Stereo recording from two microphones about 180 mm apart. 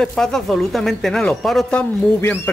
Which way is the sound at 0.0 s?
5° left (ahead or behind).